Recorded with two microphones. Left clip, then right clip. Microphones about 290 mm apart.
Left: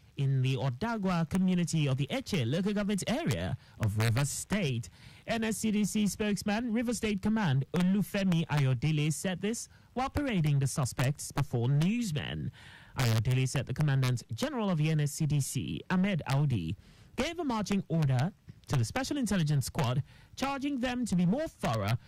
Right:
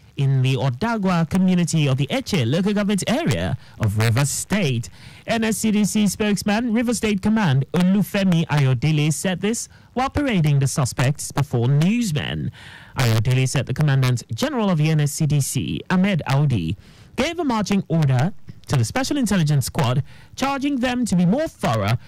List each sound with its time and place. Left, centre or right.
0.2 s speech: left; by 16.7 s centre
17.2 s speech: centre